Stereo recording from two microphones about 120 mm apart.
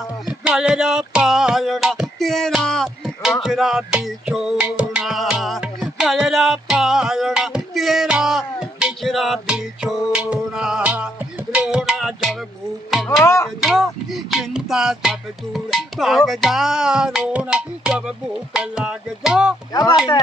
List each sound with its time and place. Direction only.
0.3 s music: 10° right (ahead or behind)
13.2 s music: 25° left (ahead or behind)
13.6 s music: centre (ahead or behind)
19.7 s speech: 30° left (ahead or behind)